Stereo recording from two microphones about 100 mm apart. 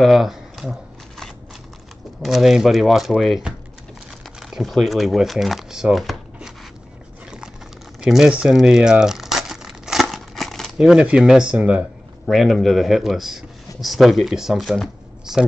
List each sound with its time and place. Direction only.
0.0 s a sound: centre (ahead or behind)
2.2 s a man's voice: 5° right (ahead or behind)
8.0 s crumpling: 5° right (ahead or behind)
10.8 s speech: 10° right (ahead or behind)
12.3 s a man's voice: centre (ahead or behind)